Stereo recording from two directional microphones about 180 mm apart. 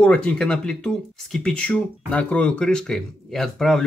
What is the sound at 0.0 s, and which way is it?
Speech, 5° left (ahead or behind).